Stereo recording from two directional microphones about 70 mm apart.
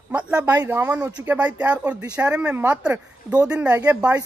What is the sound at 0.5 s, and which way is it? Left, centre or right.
Speech, right.